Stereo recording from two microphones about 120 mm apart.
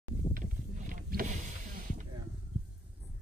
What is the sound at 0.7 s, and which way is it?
Boat, 90° right.